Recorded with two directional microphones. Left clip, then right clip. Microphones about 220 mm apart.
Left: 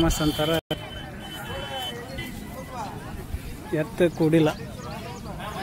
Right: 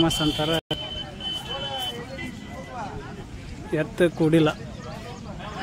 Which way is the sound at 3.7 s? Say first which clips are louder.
Right 1 dB; 5° right (ahead or behind).